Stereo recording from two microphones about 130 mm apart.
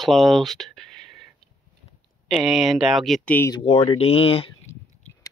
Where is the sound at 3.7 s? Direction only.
50° left (ahead or behind).